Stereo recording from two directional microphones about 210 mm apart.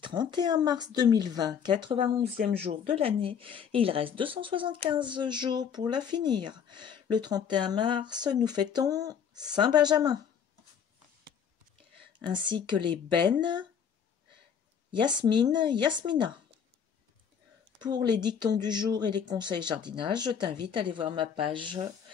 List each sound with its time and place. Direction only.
0.0 s speech: 20° right (ahead or behind)
2.3 s speech: 40° right (ahead or behind)
3.0 s speech: 25° right (ahead or behind)
12.4 s speech: 20° right (ahead or behind)
15.1 s speech: 20° right (ahead or behind)
17.8 s speech: 20° right (ahead or behind)